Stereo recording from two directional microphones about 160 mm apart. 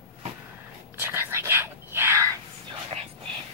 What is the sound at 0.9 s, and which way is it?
Whispering, 15° right (ahead or behind).